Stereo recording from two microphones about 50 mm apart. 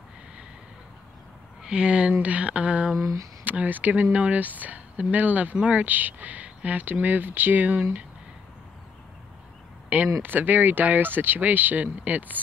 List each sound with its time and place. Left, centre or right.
1.6 s speech: centre
3.0 s speech: right
3.4 s speech: right
9.9 s speech: right